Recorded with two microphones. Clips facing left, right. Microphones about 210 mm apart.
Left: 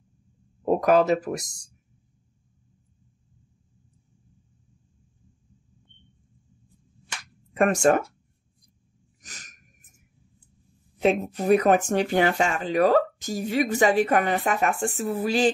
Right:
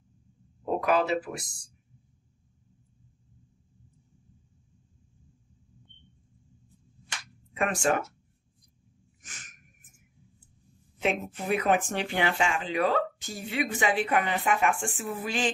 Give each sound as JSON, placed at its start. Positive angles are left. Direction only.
{"t": 0.7, "sound": "speech", "side_deg": 45}
{"t": 7.5, "sound": "speech", "side_deg": 45}
{"t": 9.2, "sound": "a sound", "side_deg": 40}
{"t": 11.0, "sound": "speech", "side_deg": 40}